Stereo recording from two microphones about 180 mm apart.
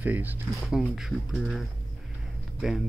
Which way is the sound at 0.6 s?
5° right (ahead or behind).